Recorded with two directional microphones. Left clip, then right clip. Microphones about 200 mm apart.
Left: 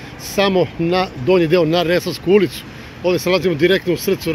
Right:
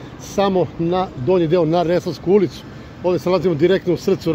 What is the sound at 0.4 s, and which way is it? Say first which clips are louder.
Speech: left 2 dB; 5° right (ahead or behind).